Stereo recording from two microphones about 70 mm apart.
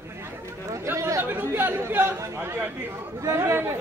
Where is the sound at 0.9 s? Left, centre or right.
Right.